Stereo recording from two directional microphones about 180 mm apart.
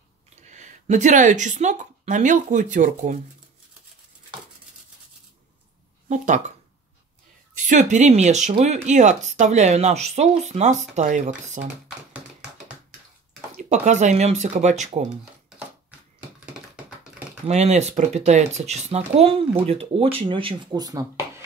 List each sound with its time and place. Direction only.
0.4 s a woman's voice: 40° right (ahead or behind)
6.0 s speech: 45° right (ahead or behind)
7.5 s speech: 45° right (ahead or behind)
12.1 s tap: 5° right (ahead or behind)
13.7 s speech: 40° right (ahead or behind)
17.5 s speech: 40° right (ahead or behind); by 21.3 s 20° right (ahead or behind)